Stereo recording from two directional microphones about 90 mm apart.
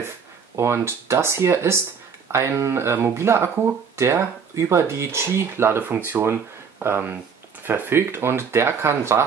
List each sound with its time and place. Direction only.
0.6 s speech: 30° right (ahead or behind)